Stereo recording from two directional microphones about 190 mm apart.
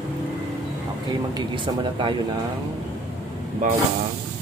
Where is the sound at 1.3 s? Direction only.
25° right (ahead or behind).